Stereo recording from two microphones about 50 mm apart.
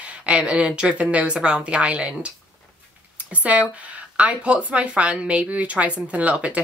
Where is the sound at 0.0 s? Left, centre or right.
Right.